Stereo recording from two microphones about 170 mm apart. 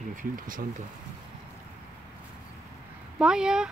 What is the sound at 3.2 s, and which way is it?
Speech, 5° right (ahead or behind).